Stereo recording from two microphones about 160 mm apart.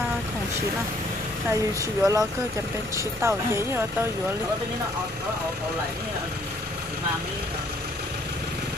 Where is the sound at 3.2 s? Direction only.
15° right (ahead or behind).